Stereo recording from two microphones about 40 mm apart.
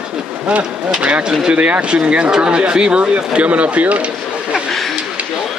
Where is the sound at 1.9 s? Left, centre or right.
Right.